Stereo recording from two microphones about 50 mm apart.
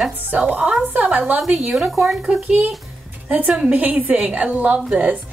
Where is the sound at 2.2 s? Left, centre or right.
Right.